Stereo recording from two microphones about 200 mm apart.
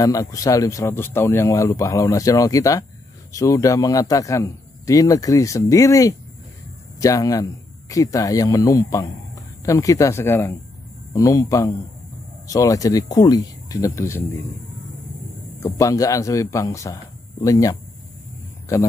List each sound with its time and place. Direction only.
0.0 s speech: 15° left (ahead or behind)
15.6 s speech: 15° left (ahead or behind)